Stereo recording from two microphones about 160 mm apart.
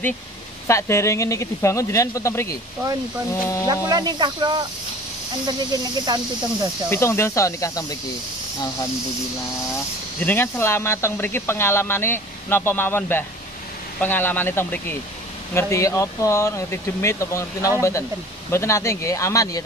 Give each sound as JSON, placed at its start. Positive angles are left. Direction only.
{"t": 0.7, "sound": "speech", "side_deg": 15}
{"t": 3.6, "sound": "speech", "side_deg": -25}
{"t": 5.7, "sound": "speech", "side_deg": -25}
{"t": 6.9, "sound": "speech", "side_deg": 15}
{"t": 10.2, "sound": "speech", "side_deg": 15}